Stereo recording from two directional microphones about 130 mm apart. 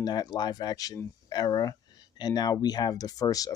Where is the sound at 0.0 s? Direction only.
30° left (ahead or behind).